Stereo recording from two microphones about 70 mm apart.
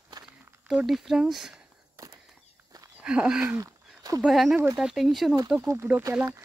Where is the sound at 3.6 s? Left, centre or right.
Right.